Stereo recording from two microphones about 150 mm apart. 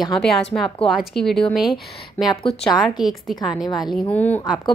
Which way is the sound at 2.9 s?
Centre (ahead or behind).